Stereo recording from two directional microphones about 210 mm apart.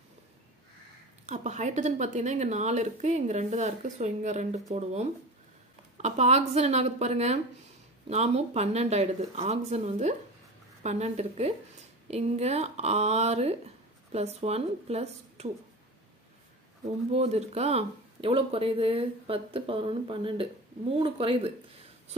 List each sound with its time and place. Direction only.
1.2 s speech: 35° right (ahead or behind)
5.9 s speech: 30° right (ahead or behind)
16.8 s speech: 30° right (ahead or behind)